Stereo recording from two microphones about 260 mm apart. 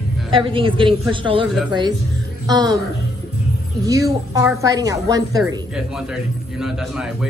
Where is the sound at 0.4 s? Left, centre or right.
Centre.